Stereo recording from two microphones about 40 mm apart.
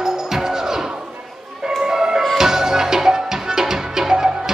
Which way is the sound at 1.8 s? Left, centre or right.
Centre.